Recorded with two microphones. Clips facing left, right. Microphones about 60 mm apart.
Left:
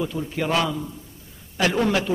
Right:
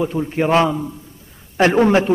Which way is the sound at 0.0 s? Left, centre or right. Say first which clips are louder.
Right 7 dB; right.